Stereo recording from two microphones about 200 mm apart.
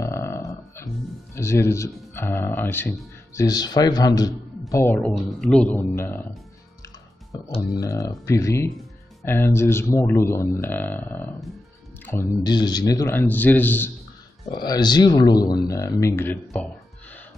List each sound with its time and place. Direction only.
0.0 s music: 15° left (ahead or behind)
1.3 s speech: 15° left (ahead or behind)
7.5 s speech: 20° left (ahead or behind)
14.5 s speech: 20° left (ahead or behind)